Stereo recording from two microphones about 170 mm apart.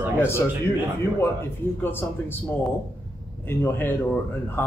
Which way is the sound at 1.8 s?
10° left (ahead or behind).